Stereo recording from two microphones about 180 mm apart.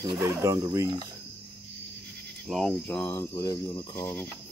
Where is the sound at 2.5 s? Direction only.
Centre (ahead or behind).